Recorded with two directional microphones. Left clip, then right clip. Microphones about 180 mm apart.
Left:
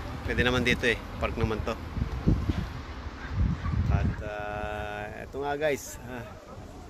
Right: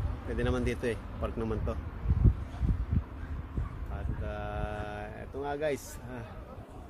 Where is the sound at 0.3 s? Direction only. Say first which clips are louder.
Left 7 dB; 20° right (ahead or behind).